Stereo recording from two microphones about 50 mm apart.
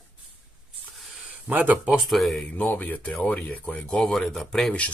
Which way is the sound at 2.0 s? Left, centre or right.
Centre.